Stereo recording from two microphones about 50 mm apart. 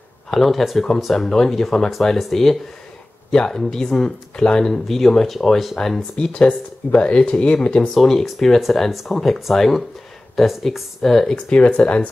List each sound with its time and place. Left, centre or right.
0.3 s speech: centre
6.3 s speech: left
7.9 s speech: centre
11.3 s speech: left